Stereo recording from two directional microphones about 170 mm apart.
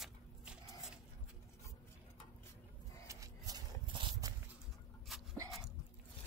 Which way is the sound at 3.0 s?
20° right (ahead or behind).